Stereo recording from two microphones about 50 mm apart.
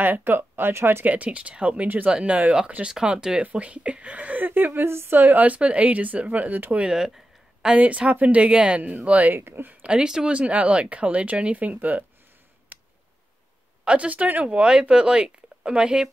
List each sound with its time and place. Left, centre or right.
0.0 s speech: right
1.0 s speech: right
4.8 s speech: right
7.7 s speech: right
9.4 s speech: right
9.8 s speech: centre
10.3 s speech: right
12.7 s tick: right
13.8 s speech: right
14.4 s speech: centre